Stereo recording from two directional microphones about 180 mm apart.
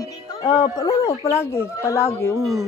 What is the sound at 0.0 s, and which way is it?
Speech, 20° left (ahead or behind).